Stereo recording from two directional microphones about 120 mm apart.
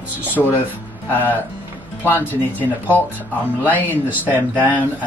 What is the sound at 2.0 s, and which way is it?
Speech, 15° left (ahead or behind).